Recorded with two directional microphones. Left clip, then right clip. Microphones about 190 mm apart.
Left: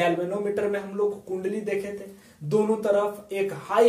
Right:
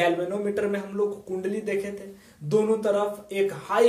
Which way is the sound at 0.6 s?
10° right (ahead or behind).